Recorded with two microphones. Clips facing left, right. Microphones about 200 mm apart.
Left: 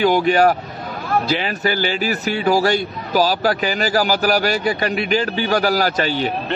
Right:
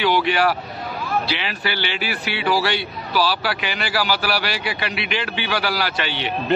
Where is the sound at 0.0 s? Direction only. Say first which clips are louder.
Left 5 dB; 45° left (ahead or behind).